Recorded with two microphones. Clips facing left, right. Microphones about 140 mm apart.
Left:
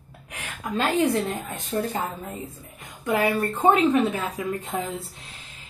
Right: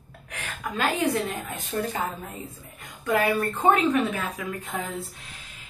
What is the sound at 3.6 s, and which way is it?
A woman's voice, 25° left (ahead or behind).